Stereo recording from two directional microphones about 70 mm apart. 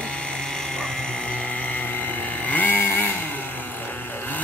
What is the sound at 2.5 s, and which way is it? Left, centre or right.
Chainsaw, left.